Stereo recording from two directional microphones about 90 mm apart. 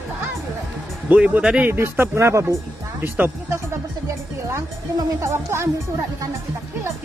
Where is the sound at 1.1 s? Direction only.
15° right (ahead or behind).